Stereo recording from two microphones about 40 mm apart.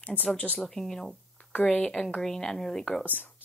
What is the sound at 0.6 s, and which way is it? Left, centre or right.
Speech, centre.